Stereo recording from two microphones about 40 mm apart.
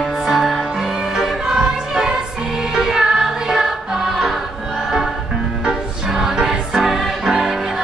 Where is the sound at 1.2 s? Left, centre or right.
Centre.